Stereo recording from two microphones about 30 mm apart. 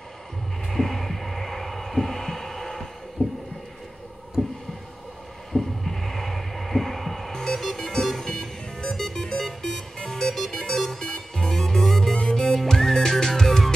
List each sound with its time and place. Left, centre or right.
0.7 s heart sounds: centre
3.2 s heart murmur: left
4.4 s a sound: left
5.5 s heart murmur: centre
9.9 s music: centre